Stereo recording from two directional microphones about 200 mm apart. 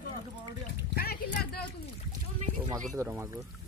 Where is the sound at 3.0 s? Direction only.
10° right (ahead or behind).